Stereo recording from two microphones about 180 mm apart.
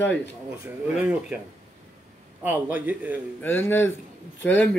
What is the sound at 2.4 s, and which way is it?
Speech, 10° right (ahead or behind).